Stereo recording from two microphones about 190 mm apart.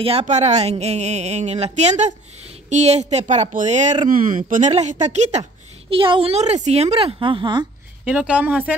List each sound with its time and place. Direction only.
0.0 s a woman's voice: 30° right (ahead or behind)
8.0 s a woman's voice: 5° right (ahead or behind)